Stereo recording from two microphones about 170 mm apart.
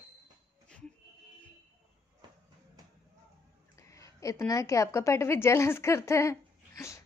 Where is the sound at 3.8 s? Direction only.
20° left (ahead or behind).